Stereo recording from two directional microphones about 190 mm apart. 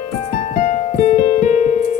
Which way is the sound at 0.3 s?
40° left (ahead or behind).